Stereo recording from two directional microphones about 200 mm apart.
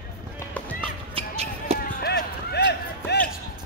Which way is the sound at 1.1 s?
30° right (ahead or behind).